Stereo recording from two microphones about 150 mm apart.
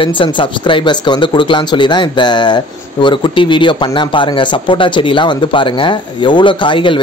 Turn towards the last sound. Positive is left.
turn(degrees=35)  # may be behind; listen again after turning